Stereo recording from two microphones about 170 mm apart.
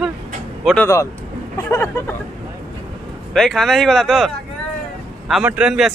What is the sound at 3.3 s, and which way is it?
Speech, 5° left (ahead or behind).